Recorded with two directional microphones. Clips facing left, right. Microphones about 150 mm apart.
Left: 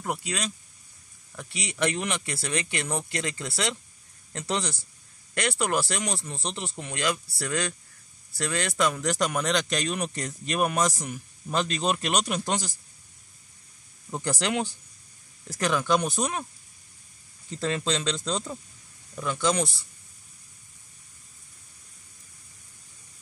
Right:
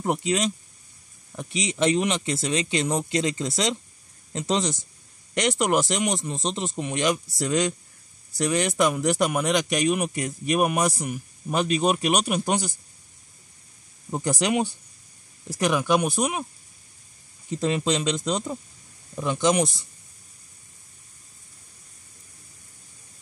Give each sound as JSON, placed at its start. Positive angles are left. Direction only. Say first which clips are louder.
{"t": 0.0, "sound": "speech", "louder": "right 7 dB", "side_deg": -25}
{"t": 14.1, "sound": "speech", "louder": "right 4 dB", "side_deg": -15}
{"t": 17.5, "sound": "speech", "louder": "right 4 dB", "side_deg": -15}